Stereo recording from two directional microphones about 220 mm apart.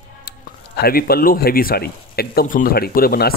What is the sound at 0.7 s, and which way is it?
Speech, 45° left (ahead or behind).